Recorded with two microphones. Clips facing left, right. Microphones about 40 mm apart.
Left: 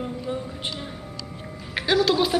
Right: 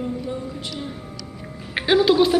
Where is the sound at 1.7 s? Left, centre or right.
Right.